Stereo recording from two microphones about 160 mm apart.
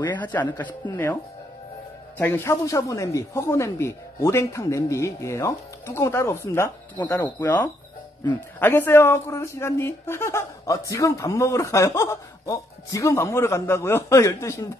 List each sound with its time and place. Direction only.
0.1 s speech: 10° left (ahead or behind)
2.1 s speech: 15° left (ahead or behind)